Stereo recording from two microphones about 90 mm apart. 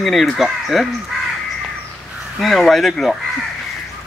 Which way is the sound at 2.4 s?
Centre (ahead or behind).